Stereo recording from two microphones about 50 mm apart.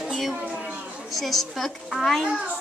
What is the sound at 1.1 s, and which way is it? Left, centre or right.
A woman's voice, centre.